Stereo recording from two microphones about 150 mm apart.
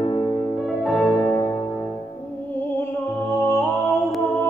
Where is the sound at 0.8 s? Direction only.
Centre (ahead or behind).